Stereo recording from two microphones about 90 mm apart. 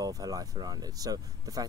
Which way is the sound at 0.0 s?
45° right (ahead or behind).